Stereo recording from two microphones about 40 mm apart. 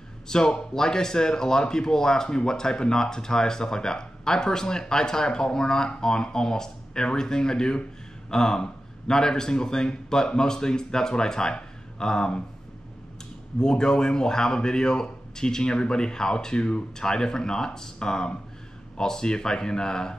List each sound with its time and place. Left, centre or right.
0.3 s speech: centre
13.6 s speech: centre